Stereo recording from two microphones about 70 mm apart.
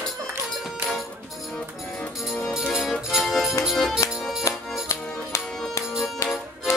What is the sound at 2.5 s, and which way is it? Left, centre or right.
Music, centre.